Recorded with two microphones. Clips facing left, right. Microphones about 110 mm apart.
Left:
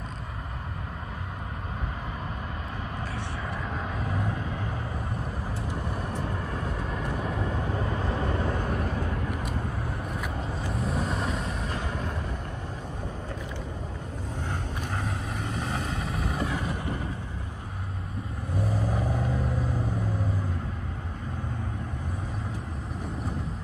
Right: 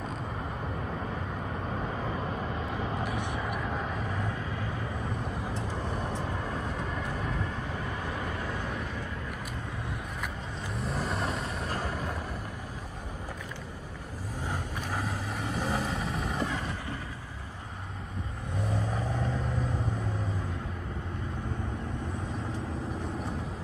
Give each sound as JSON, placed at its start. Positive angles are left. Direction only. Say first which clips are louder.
{"t": 3.0, "sound": "vehicle", "louder": "right 2 dB", "side_deg": -15}
{"t": 10.7, "sound": "vehicle", "louder": "left 2 dB", "side_deg": 0}
{"t": 15.0, "sound": "vehicle", "louder": "right 1 dB", "side_deg": 0}
{"t": 18.9, "sound": "vehicle", "louder": "left 3 dB", "side_deg": 10}